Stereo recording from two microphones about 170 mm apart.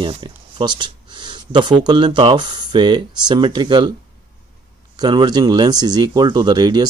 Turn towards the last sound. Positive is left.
turn(degrees=-25)  # may be behind; listen again after turning